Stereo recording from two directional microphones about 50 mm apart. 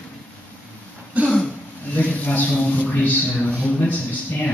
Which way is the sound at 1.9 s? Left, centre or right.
Left.